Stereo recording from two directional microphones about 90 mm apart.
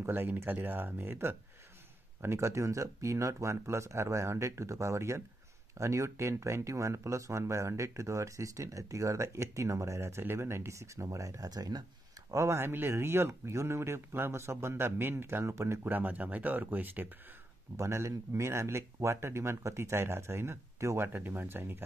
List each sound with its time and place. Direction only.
0.0 s speech: 20° right (ahead or behind); by 11.8 s 50° right (ahead or behind)
12.3 s speech: 35° right (ahead or behind)
17.7 s speech: 30° right (ahead or behind)